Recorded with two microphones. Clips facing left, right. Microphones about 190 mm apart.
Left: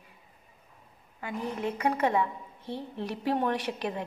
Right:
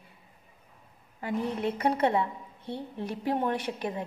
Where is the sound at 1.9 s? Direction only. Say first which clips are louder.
Right 1 dB; 35° right (ahead or behind).